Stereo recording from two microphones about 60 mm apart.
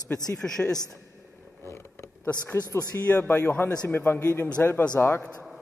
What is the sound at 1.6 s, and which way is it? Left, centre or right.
Vehicle, left.